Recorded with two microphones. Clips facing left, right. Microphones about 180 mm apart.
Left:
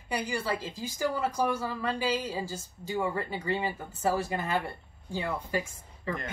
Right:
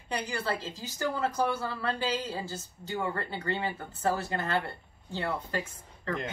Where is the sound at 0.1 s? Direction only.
10° left (ahead or behind).